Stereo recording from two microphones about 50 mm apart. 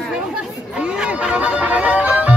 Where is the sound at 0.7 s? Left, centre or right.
Centre.